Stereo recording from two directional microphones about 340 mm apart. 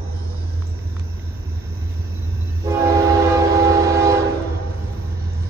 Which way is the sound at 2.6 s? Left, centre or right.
Centre.